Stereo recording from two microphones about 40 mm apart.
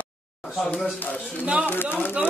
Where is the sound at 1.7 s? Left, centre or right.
Left.